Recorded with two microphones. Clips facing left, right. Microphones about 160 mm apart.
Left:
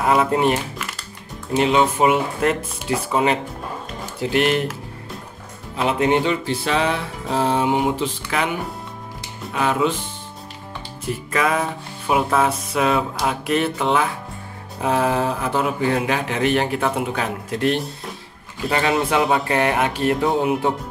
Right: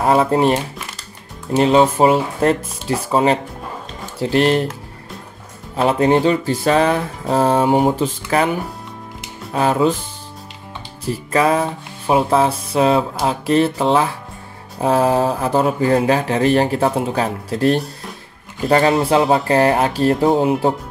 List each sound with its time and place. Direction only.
0.0 s speech: 35° right (ahead or behind)
1.6 s speech: 35° right (ahead or behind)
5.8 s speech: 35° right (ahead or behind)
9.5 s speech: 35° right (ahead or behind)
11.1 s speech: 35° right (ahead or behind)